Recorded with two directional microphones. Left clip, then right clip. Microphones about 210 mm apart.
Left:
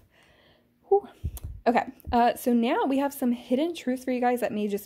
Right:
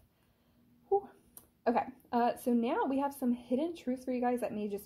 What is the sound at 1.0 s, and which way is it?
Speech, 35° left (ahead or behind).